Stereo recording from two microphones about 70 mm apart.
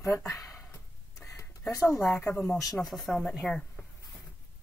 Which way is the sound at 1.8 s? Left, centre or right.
Left.